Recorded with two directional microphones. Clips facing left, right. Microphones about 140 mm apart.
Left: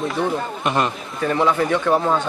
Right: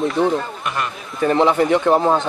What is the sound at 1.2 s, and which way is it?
A man's voice, 25° right (ahead or behind).